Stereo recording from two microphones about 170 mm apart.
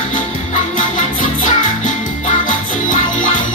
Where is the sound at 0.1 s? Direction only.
50° left (ahead or behind).